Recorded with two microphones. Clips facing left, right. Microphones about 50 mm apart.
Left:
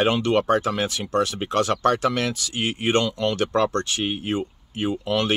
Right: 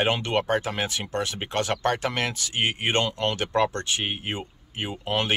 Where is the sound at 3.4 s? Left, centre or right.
Centre.